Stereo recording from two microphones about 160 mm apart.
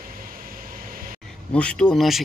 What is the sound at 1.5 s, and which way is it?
Speech, 5° left (ahead or behind).